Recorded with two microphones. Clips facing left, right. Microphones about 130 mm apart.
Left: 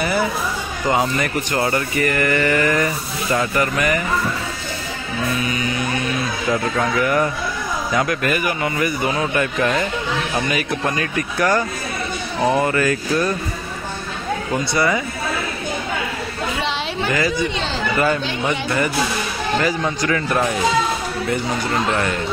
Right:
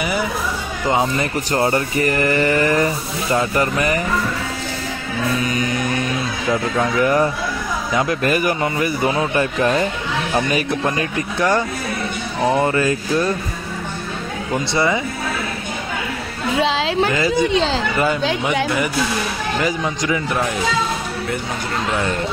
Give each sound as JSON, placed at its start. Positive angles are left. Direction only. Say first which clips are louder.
{"t": 0.8, "sound": "speech", "louder": "right 1 dB", "side_deg": -20}
{"t": 7.0, "sound": "speech", "louder": "right 3 dB", "side_deg": -35}
{"t": 7.9, "sound": "speech", "louder": "right 1 dB", "side_deg": -20}
{"t": 8.2, "sound": "speech", "louder": "right 3 dB", "side_deg": -35}
{"t": 8.6, "sound": "speech", "louder": "right 1 dB", "side_deg": -25}
{"t": 12.5, "sound": "speech", "louder": "right 1 dB", "side_deg": -25}
{"t": 14.7, "sound": "speech", "louder": "right 1 dB", "side_deg": -25}
{"t": 17.1, "sound": "speech", "louder": "right 2 dB", "side_deg": -25}
{"t": 19.6, "sound": "a man's voice", "louder": "right 1 dB", "side_deg": -15}